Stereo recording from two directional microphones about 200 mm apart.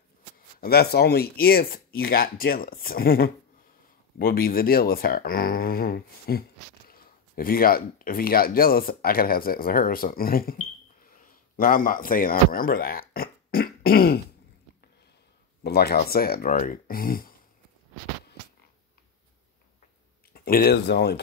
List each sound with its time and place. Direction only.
0.6 s speech: 50° left (ahead or behind)
11.1 s a sound: 45° left (ahead or behind)
15.6 s speech: 50° left (ahead or behind)
20.3 s speech: 50° left (ahead or behind)